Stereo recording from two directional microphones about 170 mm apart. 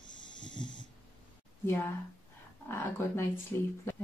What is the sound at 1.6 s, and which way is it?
Speech, 15° left (ahead or behind).